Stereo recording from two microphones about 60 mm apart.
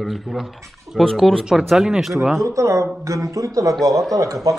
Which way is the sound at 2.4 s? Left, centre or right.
Right.